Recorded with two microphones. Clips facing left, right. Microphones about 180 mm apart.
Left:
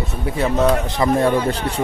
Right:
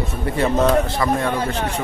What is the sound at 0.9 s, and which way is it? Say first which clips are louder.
Speech: left 3 dB; 20° left (ahead or behind).